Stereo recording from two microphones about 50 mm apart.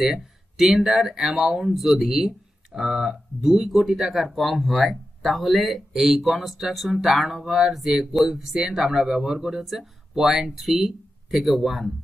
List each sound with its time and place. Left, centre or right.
0.0 s speech: centre